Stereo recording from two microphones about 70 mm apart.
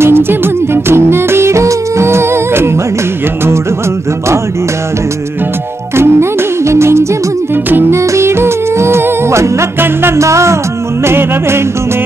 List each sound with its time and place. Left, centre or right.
0.0 s music: right
5.9 s music: right